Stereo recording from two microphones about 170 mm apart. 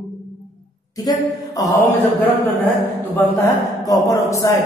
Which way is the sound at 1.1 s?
25° left (ahead or behind).